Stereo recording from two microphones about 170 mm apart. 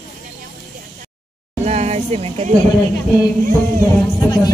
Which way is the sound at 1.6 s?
40° right (ahead or behind).